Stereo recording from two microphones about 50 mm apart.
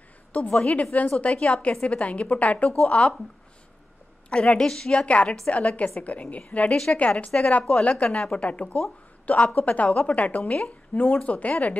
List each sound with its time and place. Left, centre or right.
0.3 s a woman's voice: left
4.3 s a woman's voice: centre
5.0 s a woman's voice: left
6.7 s a woman's voice: centre